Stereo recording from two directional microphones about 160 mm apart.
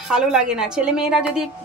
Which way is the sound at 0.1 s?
5° right (ahead or behind).